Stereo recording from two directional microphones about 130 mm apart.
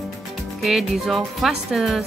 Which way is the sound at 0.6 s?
Centre (ahead or behind).